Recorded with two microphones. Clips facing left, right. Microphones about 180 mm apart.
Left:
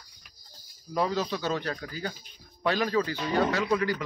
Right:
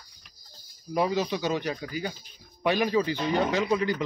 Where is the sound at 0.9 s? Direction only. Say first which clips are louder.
Right 2 dB; 15° right (ahead or behind).